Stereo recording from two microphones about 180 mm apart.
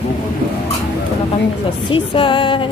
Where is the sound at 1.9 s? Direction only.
30° left (ahead or behind).